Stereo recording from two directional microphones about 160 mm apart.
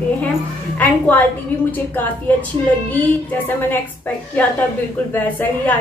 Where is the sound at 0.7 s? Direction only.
10° left (ahead or behind).